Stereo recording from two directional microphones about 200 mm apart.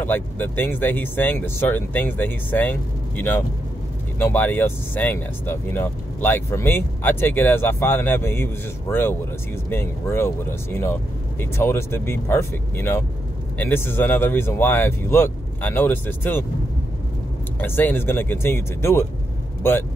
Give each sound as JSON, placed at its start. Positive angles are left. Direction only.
{"t": 0.0, "sound": "speech", "side_deg": 10}
{"t": 17.6, "sound": "speech", "side_deg": 10}